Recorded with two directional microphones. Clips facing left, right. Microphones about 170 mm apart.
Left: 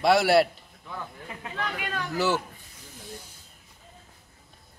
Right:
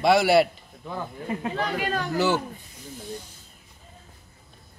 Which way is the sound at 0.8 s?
35° right (ahead or behind).